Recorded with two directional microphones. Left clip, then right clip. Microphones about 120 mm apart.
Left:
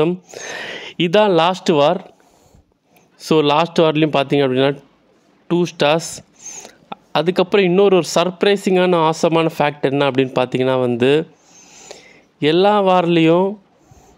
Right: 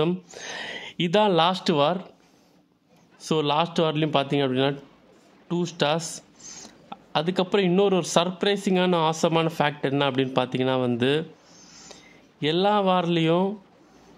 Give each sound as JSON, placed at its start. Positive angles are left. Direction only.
{"t": 0.4, "sound": "speech", "side_deg": 35}
{"t": 3.2, "sound": "speech", "side_deg": 40}
{"t": 6.4, "sound": "a sound", "side_deg": 25}
{"t": 6.7, "sound": "speech", "side_deg": 40}
{"t": 11.5, "sound": "a sound", "side_deg": 25}
{"t": 11.9, "sound": "speech", "side_deg": 40}